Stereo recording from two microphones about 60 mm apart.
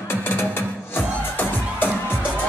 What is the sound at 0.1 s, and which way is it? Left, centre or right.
Music, left.